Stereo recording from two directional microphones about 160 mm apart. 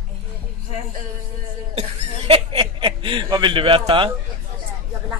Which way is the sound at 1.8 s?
40° right (ahead or behind).